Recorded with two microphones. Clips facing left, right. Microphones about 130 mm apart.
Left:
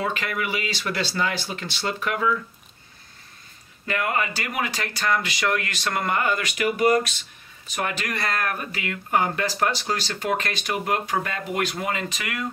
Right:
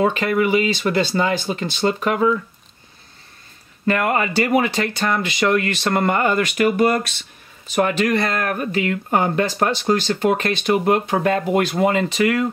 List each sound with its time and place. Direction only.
0.0 s speech: 30° right (ahead or behind)
3.8 s speech: 45° right (ahead or behind)
4.4 s speech: 30° right (ahead or behind)
6.1 s speech: 40° right (ahead or behind)
7.6 s speech: 30° right (ahead or behind)